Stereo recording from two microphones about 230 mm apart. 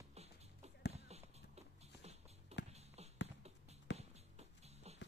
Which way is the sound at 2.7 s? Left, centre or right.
Right.